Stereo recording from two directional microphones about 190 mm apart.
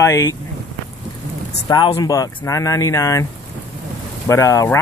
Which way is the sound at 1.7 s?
25° left (ahead or behind).